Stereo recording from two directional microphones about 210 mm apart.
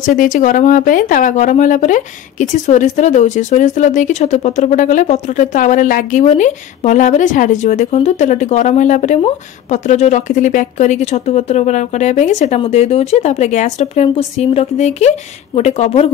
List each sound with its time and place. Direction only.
0.0 s a woman's voice: 40° left (ahead or behind)